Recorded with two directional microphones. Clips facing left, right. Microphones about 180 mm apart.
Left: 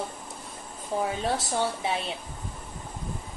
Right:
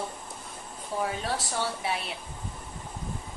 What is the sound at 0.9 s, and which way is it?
Speech, 20° left (ahead or behind).